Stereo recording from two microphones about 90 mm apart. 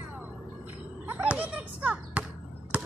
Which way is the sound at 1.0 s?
15° right (ahead or behind).